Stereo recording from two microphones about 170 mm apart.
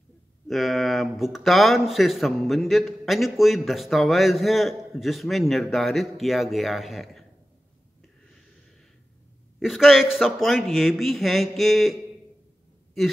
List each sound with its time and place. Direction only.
0.5 s a man's voice: centre (ahead or behind)
9.6 s a man's voice: centre (ahead or behind)